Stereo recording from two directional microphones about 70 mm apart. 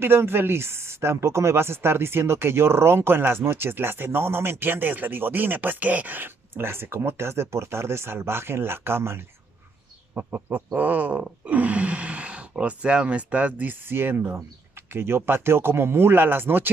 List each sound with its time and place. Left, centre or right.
0.0 s speech: right
10.1 s a sound: right
14.9 s speech: right